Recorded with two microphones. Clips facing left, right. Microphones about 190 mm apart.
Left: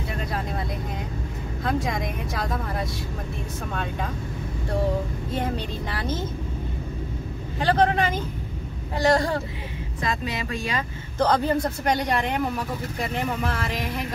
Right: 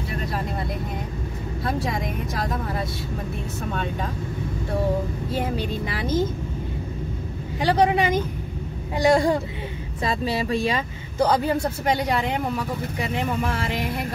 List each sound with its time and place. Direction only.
2.3 s speech: centre (ahead or behind)
5.3 s speech: 10° right (ahead or behind)
7.6 s speech: 15° right (ahead or behind)
10.0 s speech: 30° right (ahead or behind)
11.1 s speech: 10° right (ahead or behind)